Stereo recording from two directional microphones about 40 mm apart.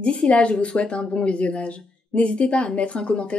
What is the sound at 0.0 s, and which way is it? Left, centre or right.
Speech, left.